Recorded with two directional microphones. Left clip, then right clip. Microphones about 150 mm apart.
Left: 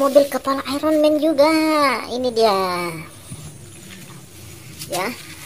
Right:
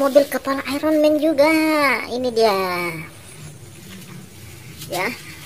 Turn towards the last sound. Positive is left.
turn(degrees=0)  # may be behind; listen again after turning